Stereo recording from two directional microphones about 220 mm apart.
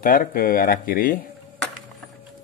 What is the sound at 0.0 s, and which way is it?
Speech, 40° left (ahead or behind).